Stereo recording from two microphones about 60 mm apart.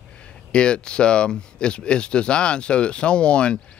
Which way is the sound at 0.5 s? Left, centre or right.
Centre.